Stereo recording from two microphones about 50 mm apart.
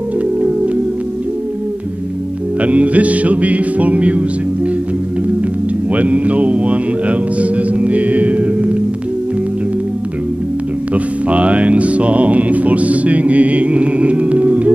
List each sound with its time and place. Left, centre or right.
2.6 s music: right
5.9 s music: right
10.9 s music: right